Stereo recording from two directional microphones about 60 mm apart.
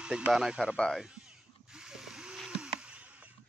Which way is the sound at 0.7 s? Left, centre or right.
Centre.